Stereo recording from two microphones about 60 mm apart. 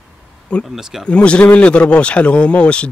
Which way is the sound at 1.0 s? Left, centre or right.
Centre.